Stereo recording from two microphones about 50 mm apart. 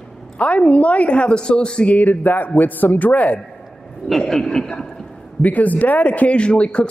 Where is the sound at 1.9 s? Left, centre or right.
Left.